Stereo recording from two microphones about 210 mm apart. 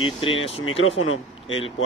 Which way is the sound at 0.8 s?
70° left (ahead or behind).